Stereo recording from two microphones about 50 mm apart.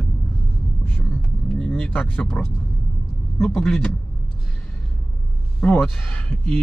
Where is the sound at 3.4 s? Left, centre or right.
Centre.